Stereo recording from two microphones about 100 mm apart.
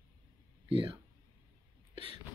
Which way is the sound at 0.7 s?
60° right (ahead or behind).